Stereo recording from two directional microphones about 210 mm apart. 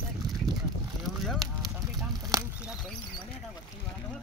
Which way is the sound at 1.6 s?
20° right (ahead or behind).